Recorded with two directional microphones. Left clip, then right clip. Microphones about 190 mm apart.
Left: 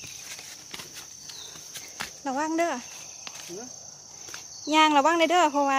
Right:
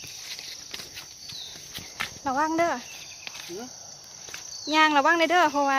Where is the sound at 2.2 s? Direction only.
15° left (ahead or behind).